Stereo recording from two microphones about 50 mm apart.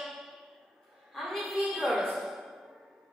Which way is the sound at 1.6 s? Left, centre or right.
Centre.